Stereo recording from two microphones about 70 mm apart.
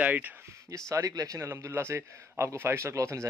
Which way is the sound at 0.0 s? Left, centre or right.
Right.